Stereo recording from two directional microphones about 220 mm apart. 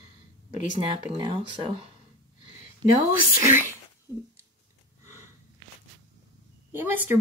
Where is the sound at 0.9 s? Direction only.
20° right (ahead or behind).